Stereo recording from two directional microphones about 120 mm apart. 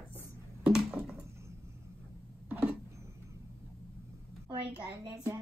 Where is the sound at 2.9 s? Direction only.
25° right (ahead or behind).